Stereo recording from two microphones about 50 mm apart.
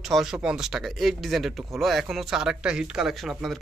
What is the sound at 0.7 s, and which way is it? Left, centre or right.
Speech, centre.